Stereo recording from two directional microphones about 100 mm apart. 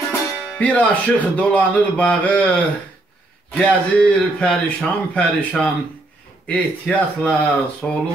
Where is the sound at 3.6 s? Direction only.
10° left (ahead or behind).